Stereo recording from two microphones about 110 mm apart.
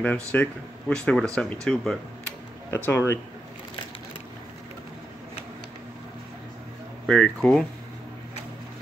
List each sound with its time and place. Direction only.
0.0 s speech: 15° left (ahead or behind)
2.7 s speech: 20° left (ahead or behind)
7.1 s speech: 5° left (ahead or behind)